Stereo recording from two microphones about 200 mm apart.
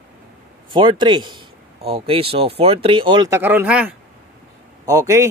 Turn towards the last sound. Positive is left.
turn(degrees=-15)  # may be behind; listen again after turning